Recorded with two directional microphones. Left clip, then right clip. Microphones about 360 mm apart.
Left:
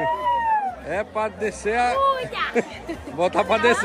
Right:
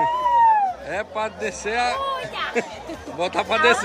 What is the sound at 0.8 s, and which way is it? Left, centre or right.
A woman's voice, centre.